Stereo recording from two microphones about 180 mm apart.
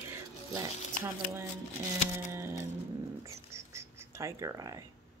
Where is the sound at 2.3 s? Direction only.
15° right (ahead or behind).